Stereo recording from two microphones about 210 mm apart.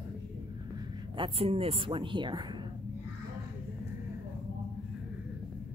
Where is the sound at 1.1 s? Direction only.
25° right (ahead or behind).